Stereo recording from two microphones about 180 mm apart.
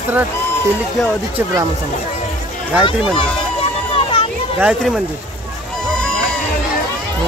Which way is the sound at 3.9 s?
30° left (ahead or behind).